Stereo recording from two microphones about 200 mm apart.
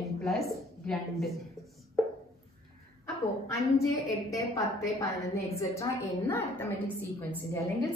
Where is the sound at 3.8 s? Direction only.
15° left (ahead or behind).